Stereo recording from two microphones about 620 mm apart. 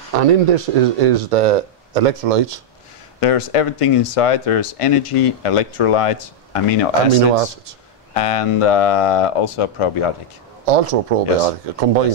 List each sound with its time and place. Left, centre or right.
0.1 s speech: right
3.2 s speech: left
10.6 s speech: right